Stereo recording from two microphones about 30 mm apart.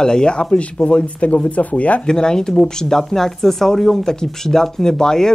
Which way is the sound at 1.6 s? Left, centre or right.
Left.